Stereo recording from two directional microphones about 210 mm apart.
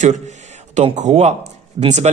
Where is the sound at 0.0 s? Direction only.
35° right (ahead or behind).